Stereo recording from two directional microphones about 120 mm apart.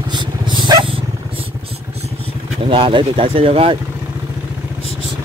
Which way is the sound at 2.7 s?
45° right (ahead or behind).